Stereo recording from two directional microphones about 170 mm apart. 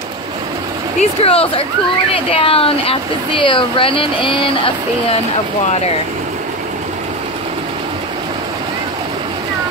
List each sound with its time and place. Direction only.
1.2 s speech: 35° left (ahead or behind)